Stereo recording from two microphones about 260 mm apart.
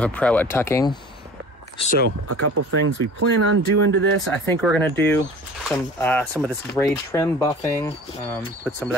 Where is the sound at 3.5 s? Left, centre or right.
Right.